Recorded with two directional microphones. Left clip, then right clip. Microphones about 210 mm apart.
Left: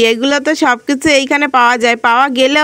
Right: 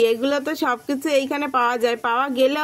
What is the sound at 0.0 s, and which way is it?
Speech, 40° left (ahead or behind).